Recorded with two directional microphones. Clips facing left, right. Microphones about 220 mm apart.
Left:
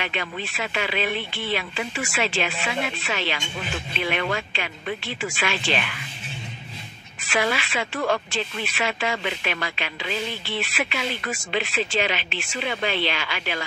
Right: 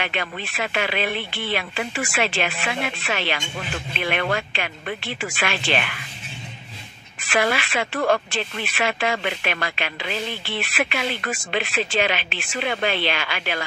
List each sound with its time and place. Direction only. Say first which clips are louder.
0.0 s speech: right 1 dB; 60° right (ahead or behind)
7.2 s speech: right 2 dB; 55° right (ahead or behind)